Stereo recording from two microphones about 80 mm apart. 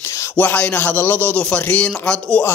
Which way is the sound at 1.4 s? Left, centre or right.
Centre.